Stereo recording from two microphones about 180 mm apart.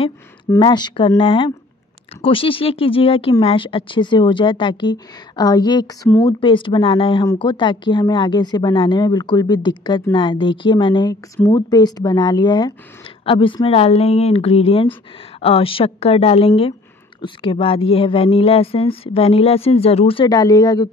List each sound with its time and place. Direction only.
0.6 s speech: 25° left (ahead or behind)